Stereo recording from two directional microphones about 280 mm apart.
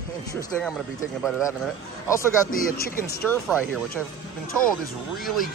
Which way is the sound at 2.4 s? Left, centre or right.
Left.